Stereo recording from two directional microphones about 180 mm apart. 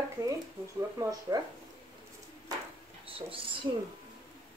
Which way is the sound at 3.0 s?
30° right (ahead or behind).